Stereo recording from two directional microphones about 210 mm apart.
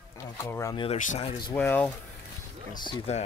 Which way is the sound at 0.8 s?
35° left (ahead or behind).